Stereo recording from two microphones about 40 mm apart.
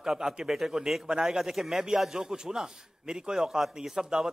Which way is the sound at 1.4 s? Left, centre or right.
Centre.